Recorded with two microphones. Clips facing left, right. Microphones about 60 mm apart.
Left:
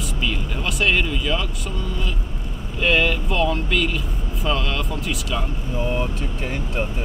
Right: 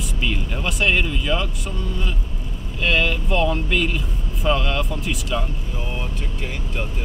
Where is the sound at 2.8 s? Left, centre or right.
Centre.